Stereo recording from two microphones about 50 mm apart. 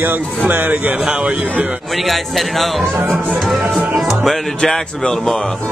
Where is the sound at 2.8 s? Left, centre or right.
Right.